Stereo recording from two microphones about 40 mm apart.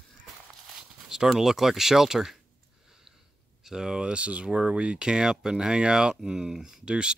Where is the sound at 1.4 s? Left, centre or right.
Centre.